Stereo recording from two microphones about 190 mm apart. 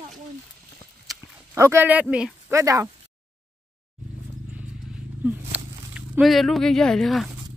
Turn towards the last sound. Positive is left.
turn(degrees=0)  # may be behind; listen again after turning